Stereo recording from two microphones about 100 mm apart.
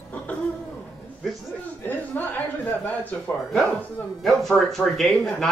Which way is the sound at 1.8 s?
15° left (ahead or behind).